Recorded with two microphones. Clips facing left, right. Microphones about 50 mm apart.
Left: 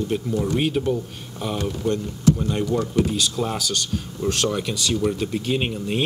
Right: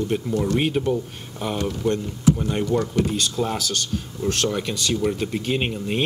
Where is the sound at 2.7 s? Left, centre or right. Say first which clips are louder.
Even; centre.